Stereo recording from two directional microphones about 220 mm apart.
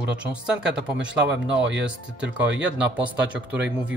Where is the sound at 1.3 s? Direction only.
55° right (ahead or behind).